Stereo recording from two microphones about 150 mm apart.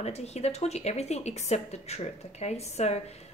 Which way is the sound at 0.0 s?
45° left (ahead or behind).